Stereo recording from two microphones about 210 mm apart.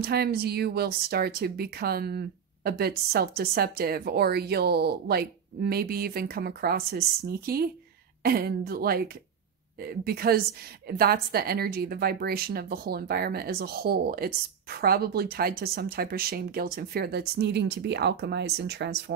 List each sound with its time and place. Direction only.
0.0 s speech: 50° right (ahead or behind)